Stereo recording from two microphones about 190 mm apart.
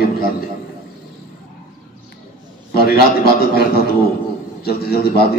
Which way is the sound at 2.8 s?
55° left (ahead or behind).